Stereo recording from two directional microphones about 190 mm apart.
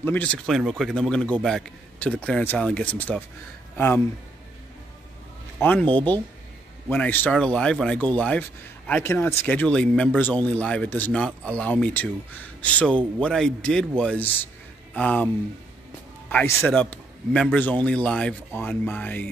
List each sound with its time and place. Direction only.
0.0 s a man's voice: 10° left (ahead or behind)
5.6 s speech: 10° left (ahead or behind)
16.3 s a man's voice: 10° left (ahead or behind)